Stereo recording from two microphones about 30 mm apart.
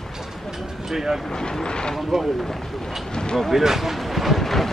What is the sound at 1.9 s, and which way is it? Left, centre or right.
Speech, centre.